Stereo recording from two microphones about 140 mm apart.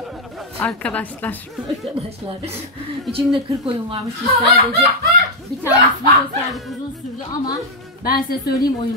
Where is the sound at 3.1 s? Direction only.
40° right (ahead or behind).